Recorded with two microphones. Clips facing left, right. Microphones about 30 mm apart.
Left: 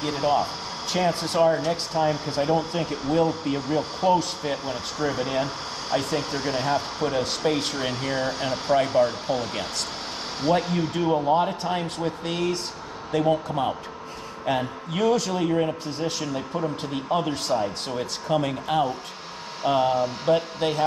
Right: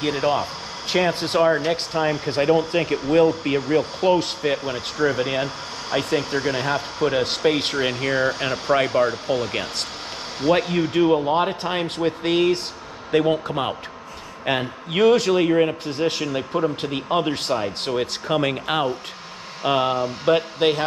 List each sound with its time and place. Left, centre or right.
0.0 s a man's voice: right
10.5 s a man's voice: right